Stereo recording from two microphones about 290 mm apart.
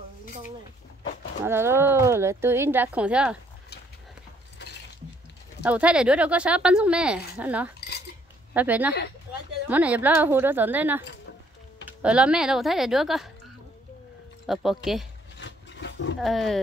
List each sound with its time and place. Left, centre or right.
1.4 s a woman's voice: centre
5.6 s a woman's voice: centre
14.4 s speech: centre
15.3 s roaring cats: left
16.2 s speech: centre